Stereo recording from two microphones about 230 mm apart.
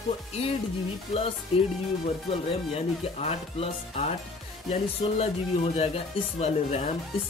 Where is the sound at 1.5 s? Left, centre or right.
Left.